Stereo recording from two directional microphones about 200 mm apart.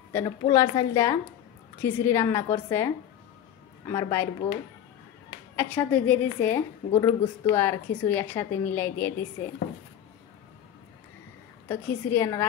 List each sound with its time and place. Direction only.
0.1 s a woman's voice: 15° left (ahead or behind)
3.9 s a woman's voice: 15° left (ahead or behind)
5.6 s a woman's voice: 10° left (ahead or behind)
11.7 s a woman's voice: 15° left (ahead or behind)